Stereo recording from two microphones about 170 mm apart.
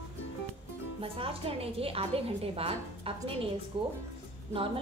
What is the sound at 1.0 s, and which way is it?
A woman's voice, 35° right (ahead or behind).